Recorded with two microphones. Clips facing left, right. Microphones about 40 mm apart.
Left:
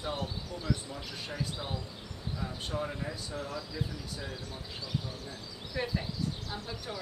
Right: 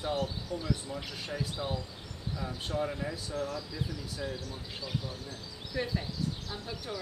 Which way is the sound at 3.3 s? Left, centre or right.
Centre.